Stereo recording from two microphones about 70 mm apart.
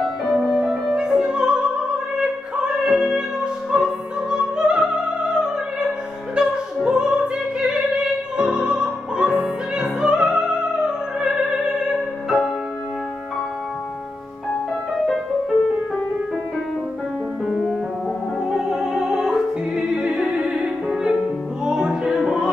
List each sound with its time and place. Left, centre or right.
0.2 s music: centre
2.8 s music: centre
8.4 s opera: centre
17.5 s music: centre
18.5 s opera: centre
21.6 s music: centre